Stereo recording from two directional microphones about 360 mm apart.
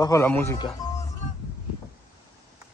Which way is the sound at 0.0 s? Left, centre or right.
Centre.